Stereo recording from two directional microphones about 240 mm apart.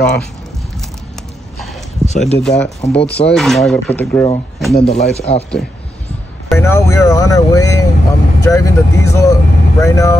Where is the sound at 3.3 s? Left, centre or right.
Centre.